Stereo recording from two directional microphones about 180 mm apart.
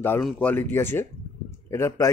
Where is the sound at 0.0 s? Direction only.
10° left (ahead or behind).